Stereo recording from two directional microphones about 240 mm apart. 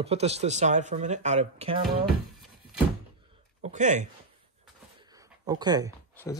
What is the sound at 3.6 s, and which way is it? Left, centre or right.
Speech, right.